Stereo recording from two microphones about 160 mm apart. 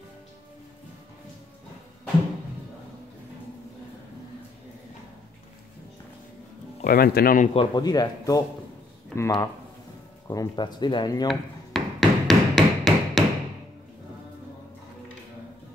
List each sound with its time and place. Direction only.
6.8 s speech: 70° left (ahead or behind)
7.5 s speech: 25° left (ahead or behind)
11.2 s hammer: centre (ahead or behind)